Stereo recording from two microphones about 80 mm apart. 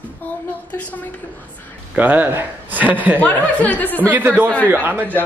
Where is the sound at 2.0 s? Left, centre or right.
Right.